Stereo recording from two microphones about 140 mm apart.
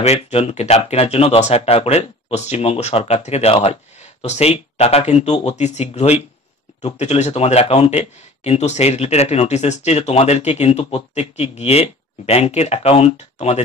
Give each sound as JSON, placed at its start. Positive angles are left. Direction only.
{"t": 0.0, "sound": "speech", "side_deg": 50}